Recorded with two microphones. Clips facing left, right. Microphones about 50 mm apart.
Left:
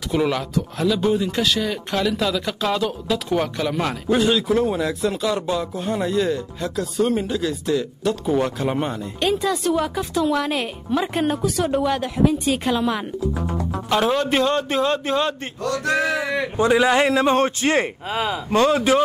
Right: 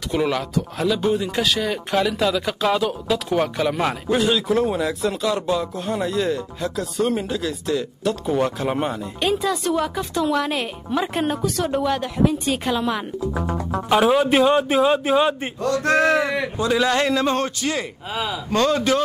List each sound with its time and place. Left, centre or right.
0.1 s speech: centre
14.0 s a man's voice: centre
15.8 s speech: right
16.5 s a man's voice: left
18.5 s a man's voice: centre